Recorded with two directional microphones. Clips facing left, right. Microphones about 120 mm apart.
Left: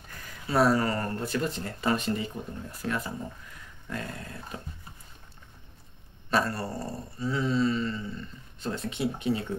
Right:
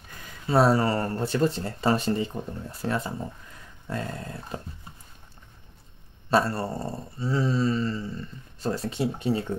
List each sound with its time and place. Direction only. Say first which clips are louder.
0.2 s speech: right 3 dB; 25° right (ahead or behind)
6.3 s speech: right 4 dB; 25° right (ahead or behind)